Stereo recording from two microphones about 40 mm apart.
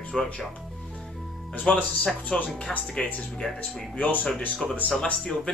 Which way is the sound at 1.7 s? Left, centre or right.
Left.